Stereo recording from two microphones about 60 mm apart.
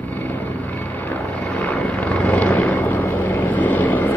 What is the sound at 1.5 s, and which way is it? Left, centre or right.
Vehicle, left.